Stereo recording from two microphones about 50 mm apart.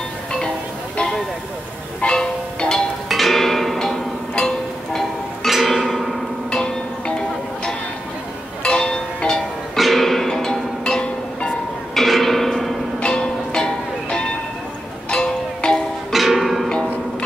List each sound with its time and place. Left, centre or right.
0.9 s a sound: centre
2.0 s music: centre
3.1 s music: centre
6.5 s music: centre
9.8 s music: centre
12.0 s a sound: centre
15.0 s music: centre
16.1 s music: centre